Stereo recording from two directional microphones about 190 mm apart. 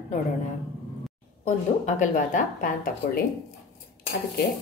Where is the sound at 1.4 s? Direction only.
40° left (ahead or behind).